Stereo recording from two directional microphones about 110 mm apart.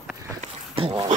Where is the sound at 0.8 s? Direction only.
55° right (ahead or behind).